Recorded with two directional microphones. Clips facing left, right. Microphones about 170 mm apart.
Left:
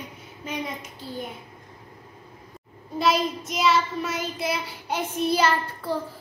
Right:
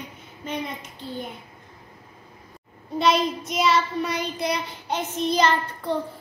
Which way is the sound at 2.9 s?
Centre (ahead or behind).